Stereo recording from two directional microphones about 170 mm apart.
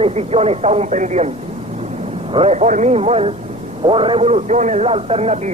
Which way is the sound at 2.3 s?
40° right (ahead or behind).